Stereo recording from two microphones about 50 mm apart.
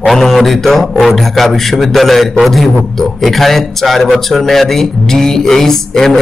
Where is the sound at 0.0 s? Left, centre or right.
Centre.